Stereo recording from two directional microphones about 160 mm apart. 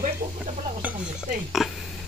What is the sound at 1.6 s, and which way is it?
Speech, centre (ahead or behind).